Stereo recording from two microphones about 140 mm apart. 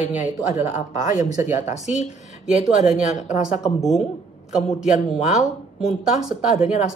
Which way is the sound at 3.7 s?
Centre (ahead or behind).